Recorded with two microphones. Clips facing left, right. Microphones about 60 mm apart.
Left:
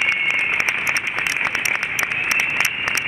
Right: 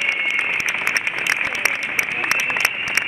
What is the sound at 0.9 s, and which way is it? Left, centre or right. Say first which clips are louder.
Applause: right 1 dB; right.